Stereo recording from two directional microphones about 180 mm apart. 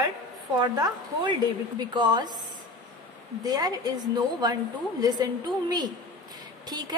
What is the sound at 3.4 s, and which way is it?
A woman's voice, 20° right (ahead or behind).